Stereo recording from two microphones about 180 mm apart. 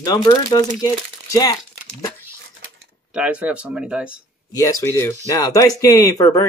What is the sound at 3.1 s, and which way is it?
Speech, 5° right (ahead or behind).